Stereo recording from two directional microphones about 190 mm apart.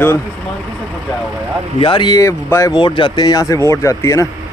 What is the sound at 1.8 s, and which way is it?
Speech, 25° left (ahead or behind).